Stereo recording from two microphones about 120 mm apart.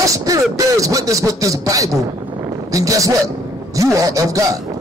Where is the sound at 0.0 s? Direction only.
30° right (ahead or behind).